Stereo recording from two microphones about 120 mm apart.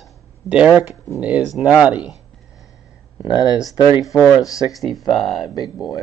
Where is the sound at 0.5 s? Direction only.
10° right (ahead or behind).